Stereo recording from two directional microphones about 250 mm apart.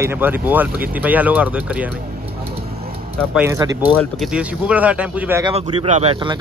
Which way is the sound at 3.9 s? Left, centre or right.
Centre.